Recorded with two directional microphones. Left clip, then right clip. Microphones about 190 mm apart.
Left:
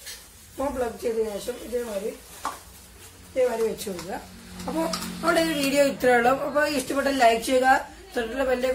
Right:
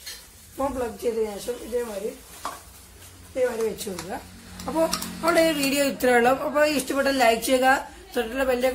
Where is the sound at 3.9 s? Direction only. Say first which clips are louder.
Even; 30° right (ahead or behind).